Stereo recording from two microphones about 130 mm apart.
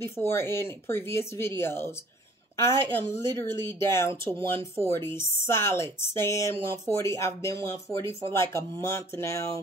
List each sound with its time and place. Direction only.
0.0 s speech: 20° left (ahead or behind)